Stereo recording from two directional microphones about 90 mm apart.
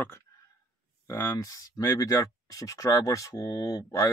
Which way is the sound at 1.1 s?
35° left (ahead or behind).